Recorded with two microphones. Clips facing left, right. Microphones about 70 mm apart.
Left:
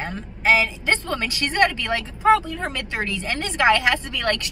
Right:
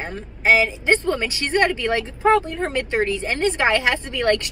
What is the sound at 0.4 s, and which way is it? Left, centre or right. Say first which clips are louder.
Speech: right 2 dB; right.